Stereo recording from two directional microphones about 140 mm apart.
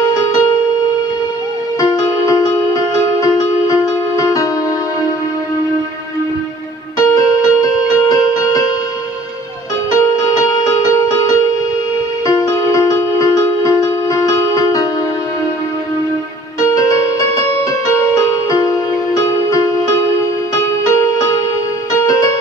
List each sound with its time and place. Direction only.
4.2 s music: 25° left (ahead or behind)
7.0 s music: 25° left (ahead or behind)
9.9 s music: 25° left (ahead or behind)
14.0 s music: 25° left (ahead or behind)
16.6 s music: 25° left (ahead or behind)
20.8 s music: 20° left (ahead or behind)